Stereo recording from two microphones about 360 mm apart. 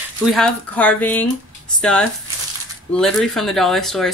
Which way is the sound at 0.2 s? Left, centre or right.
Centre.